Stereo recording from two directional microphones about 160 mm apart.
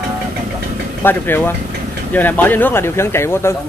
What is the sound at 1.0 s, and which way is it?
Speech, 15° left (ahead or behind).